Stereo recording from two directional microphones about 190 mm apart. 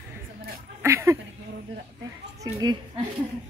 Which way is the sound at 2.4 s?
20° right (ahead or behind).